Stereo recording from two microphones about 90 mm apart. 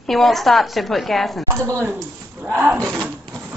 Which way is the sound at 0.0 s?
Centre (ahead or behind).